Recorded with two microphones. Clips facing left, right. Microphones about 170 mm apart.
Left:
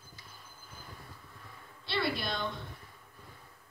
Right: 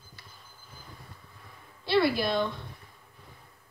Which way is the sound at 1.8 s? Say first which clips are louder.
Right 9 dB; 60° right (ahead or behind).